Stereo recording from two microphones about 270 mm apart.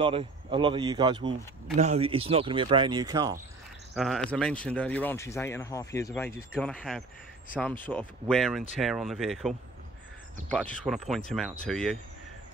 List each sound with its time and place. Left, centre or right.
0.0 s speech: centre
3.9 s speech: centre